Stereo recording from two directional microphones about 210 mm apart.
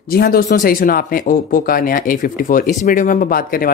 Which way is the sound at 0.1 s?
45° left (ahead or behind).